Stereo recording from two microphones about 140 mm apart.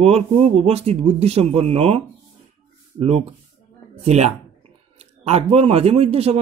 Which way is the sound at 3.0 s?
50° right (ahead or behind).